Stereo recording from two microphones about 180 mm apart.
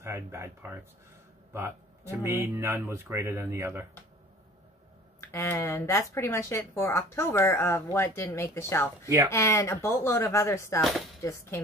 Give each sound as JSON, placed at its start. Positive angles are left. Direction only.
{"t": 0.0, "sound": "speech", "side_deg": -15}
{"t": 5.2, "sound": "speech", "side_deg": 15}
{"t": 10.8, "sound": "speech", "side_deg": 0}